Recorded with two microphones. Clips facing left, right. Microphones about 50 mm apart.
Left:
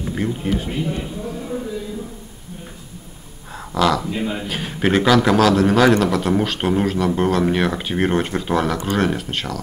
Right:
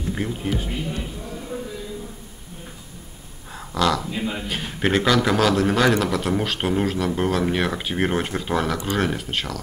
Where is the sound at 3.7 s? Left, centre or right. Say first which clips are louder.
Left 3 dB; centre.